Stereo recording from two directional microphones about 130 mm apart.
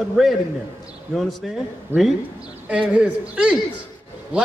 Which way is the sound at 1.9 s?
15° right (ahead or behind).